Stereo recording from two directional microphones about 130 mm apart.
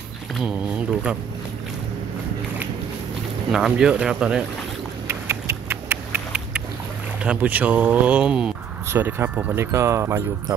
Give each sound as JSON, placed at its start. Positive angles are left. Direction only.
{"t": 0.4, "sound": "speech", "side_deg": -10}
{"t": 3.5, "sound": "speech", "side_deg": -5}
{"t": 5.0, "sound": "a sound", "side_deg": -20}
{"t": 7.2, "sound": "speech", "side_deg": -10}